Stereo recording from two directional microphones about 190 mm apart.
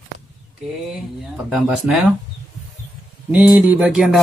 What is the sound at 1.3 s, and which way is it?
Speech, 5° right (ahead or behind).